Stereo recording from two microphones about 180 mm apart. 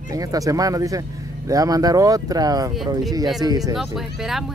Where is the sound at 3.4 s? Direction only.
20° right (ahead or behind).